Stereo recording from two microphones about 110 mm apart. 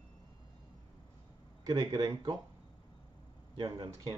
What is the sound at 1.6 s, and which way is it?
Speech, 40° right (ahead or behind).